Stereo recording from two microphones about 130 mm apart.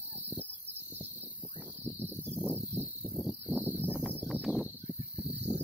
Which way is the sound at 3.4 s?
15° right (ahead or behind).